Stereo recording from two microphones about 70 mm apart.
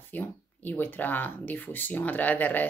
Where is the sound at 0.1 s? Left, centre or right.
Left.